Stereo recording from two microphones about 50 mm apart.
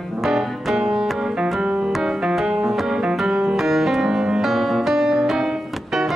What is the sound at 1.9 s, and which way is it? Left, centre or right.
Piano, centre.